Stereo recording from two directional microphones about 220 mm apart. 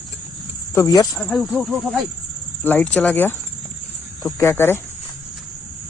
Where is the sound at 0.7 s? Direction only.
15° left (ahead or behind).